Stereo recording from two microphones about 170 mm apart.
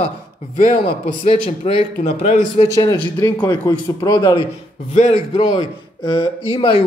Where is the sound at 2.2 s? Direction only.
45° left (ahead or behind).